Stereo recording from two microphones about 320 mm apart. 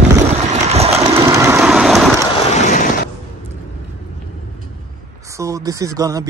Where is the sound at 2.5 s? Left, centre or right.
Left.